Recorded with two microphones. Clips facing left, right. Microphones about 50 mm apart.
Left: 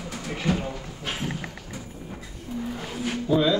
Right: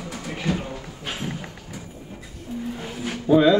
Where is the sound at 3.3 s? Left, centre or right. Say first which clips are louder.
Right 6 dB; right.